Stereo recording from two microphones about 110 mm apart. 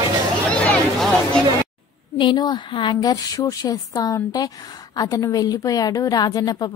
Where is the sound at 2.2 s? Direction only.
45° left (ahead or behind).